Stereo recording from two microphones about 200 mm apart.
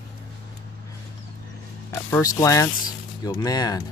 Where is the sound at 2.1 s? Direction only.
15° left (ahead or behind).